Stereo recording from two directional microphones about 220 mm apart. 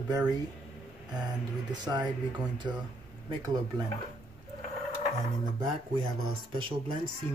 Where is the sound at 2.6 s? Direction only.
20° right (ahead or behind).